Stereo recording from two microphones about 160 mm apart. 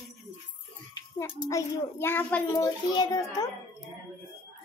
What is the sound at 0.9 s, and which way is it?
A child's voice, 20° left (ahead or behind).